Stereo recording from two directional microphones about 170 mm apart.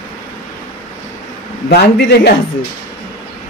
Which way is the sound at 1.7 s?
80° left.